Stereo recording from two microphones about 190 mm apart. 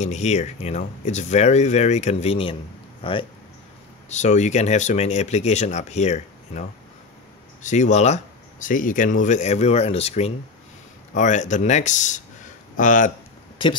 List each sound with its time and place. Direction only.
0.0 s speech: 35° left (ahead or behind)
4.1 s speech: 40° left (ahead or behind)
7.6 s speech: 40° left (ahead or behind)